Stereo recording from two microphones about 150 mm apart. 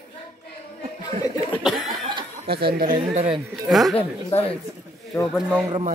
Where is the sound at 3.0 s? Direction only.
40° right (ahead or behind).